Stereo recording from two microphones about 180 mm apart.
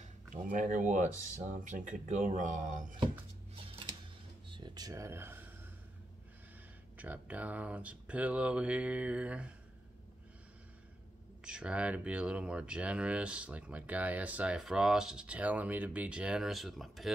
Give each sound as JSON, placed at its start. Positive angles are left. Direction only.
{"t": 0.0, "sound": "speech", "side_deg": -45}
{"t": 4.5, "sound": "a sound", "side_deg": -25}
{"t": 7.0, "sound": "speech", "side_deg": -10}
{"t": 11.4, "sound": "speech", "side_deg": -5}